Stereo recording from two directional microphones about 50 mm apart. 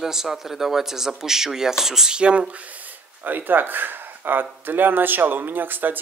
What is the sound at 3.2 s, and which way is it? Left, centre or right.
Speech, right.